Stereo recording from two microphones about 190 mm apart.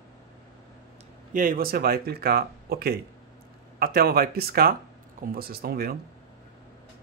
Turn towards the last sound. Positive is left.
turn(degrees=-55)  # may be behind; listen again after turning